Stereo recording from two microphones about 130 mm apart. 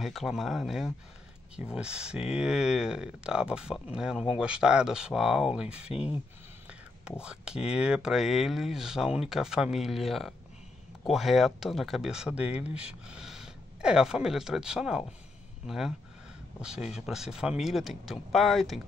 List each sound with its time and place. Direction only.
0.0 s speech: centre (ahead or behind)
5.9 s speech: 50° left (ahead or behind)
6.7 s speech: 5° right (ahead or behind)